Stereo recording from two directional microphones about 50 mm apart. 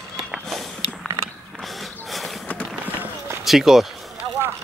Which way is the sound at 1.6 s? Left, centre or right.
Centre.